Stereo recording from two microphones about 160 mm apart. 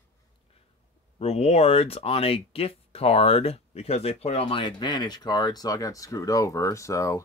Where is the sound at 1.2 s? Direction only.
40° left (ahead or behind).